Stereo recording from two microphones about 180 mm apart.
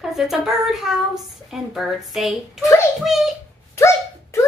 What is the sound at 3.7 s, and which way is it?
Dog, 15° left (ahead or behind).